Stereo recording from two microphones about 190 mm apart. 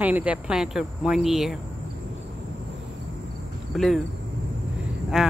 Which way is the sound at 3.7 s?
Centre (ahead or behind).